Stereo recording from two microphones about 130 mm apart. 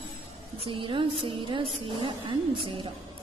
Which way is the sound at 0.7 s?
40° right (ahead or behind).